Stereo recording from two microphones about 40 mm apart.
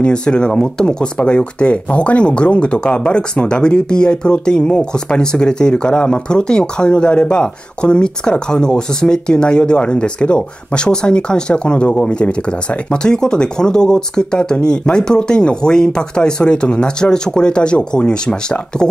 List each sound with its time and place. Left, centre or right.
0.0 s speech: left